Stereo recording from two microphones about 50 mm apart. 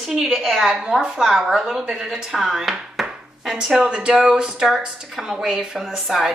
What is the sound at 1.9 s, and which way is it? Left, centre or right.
Speech, centre.